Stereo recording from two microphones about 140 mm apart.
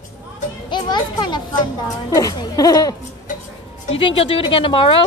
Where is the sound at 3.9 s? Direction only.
40° left (ahead or behind).